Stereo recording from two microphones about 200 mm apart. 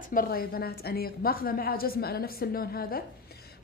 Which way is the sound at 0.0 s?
45° left (ahead or behind).